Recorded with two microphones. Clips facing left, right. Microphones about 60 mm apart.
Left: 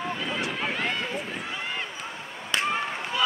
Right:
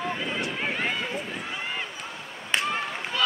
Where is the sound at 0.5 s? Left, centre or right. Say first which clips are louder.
Even; centre.